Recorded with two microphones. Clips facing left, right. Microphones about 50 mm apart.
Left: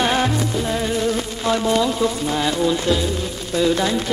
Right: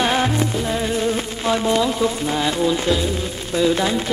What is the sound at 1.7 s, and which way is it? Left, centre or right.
Speech, centre.